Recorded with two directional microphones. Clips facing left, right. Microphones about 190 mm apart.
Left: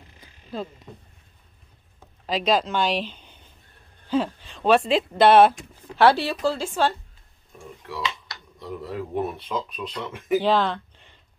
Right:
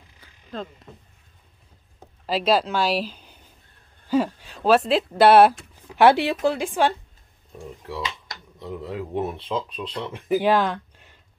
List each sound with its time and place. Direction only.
0.2 s frog: 10° left (ahead or behind)
2.2 s speech: 5° right (ahead or behind)
7.8 s speech: 30° right (ahead or behind)
8.5 s speech: 20° right (ahead or behind)
10.4 s a sound: 10° right (ahead or behind)